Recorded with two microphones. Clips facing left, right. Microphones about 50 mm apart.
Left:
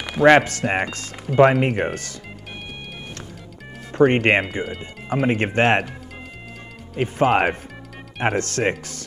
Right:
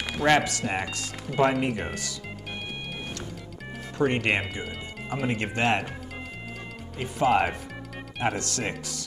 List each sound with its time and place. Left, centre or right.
0.2 s speech: left
4.0 s speech: left
7.0 s speech: left